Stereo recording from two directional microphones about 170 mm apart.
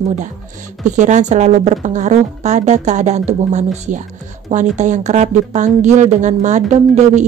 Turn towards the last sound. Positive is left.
turn(degrees=-45)  # may be behind; listen again after turning